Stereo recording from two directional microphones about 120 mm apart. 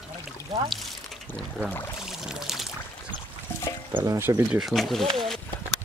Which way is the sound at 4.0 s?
25° right (ahead or behind).